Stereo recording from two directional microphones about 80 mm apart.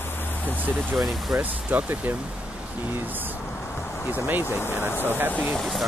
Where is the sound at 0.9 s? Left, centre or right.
Centre.